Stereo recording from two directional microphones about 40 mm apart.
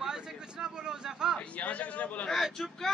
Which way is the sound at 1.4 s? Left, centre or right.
Left.